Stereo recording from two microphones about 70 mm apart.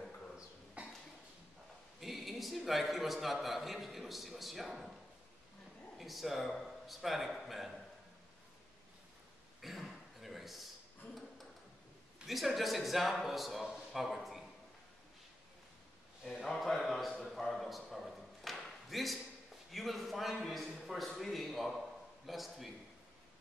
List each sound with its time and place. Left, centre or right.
0.8 s cough: centre
2.0 s a man's voice: centre
5.9 s a man's voice: centre
9.6 s a sound: centre
12.3 s a man's voice: centre
16.3 s a sound: centre
19.7 s a man's voice: centre